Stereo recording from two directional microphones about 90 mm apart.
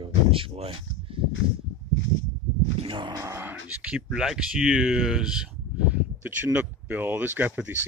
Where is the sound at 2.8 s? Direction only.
70° right (ahead or behind).